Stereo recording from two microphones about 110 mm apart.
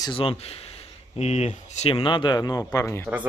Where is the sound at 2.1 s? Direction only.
45° left (ahead or behind); by 3.1 s 25° left (ahead or behind).